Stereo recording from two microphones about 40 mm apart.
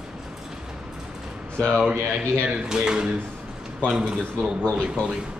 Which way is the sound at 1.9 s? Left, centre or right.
Right.